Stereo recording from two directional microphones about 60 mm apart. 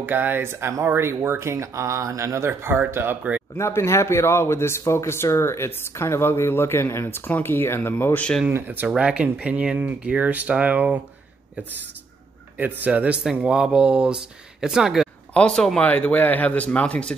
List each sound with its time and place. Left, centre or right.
0.0 s speech: right
3.5 s speech: left
8.5 s speech: right
8.9 s speech: centre
12.5 s speech: right; by 15.0 s centre
15.3 s speech: centre
15.8 s speech: left